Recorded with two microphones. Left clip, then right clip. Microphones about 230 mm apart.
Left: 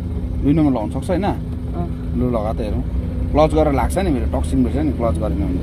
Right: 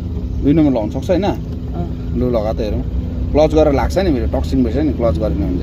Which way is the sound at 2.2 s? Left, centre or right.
Left.